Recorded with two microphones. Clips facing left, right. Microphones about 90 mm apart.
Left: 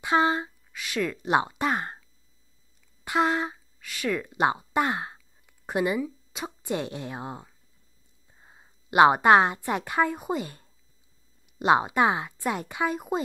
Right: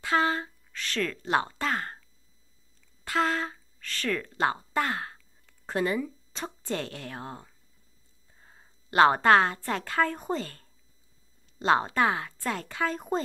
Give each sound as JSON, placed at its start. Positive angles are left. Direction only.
{"t": 0.0, "sound": "speech", "side_deg": 20}
{"t": 3.1, "sound": "a woman's voice", "side_deg": 20}